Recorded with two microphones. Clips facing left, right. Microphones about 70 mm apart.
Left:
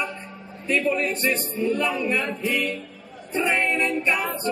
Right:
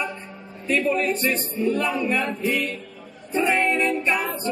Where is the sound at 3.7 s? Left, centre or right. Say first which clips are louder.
Right 1 dB; centre.